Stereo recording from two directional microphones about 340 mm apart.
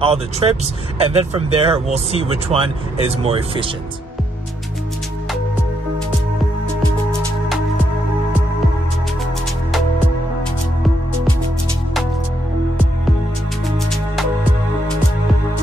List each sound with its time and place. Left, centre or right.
0.0 s speech: centre
6.8 s music: centre